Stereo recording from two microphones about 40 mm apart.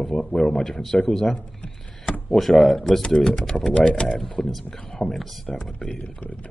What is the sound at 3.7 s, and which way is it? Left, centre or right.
Speech, left.